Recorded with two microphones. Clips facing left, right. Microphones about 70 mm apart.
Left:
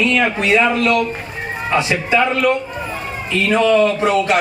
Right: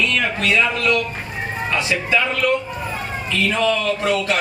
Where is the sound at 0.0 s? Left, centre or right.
Left.